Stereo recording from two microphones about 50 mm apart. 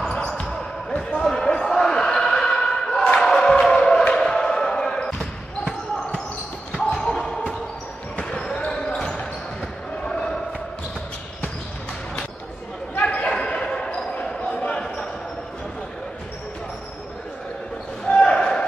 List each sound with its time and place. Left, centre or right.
0.1 s basketball bounce: centre
3.2 s music: centre
4.2 s basketball bounce: centre
6.8 s basketball bounce: centre
10.0 s basketball bounce: centre
13.0 s basketball bounce: left
18.1 s basketball bounce: centre